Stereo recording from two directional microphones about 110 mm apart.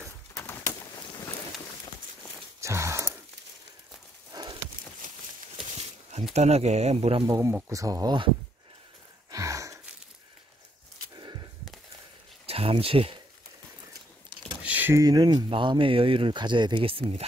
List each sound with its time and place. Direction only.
0.4 s bird: 20° left (ahead or behind)
2.6 s gasp: 25° right (ahead or behind)
4.3 s horse: 35° right (ahead or behind)
6.3 s speech: 90° right; by 7.2 s 65° right (ahead or behind)
7.2 s speech: 30° right (ahead or behind)
9.3 s a sound: 30° right (ahead or behind)
12.4 s speech: 65° right (ahead or behind)
14.6 s a sound: 15° right (ahead or behind)
15.0 s speech: 35° right (ahead or behind); by 17.3 s 60° right (ahead or behind)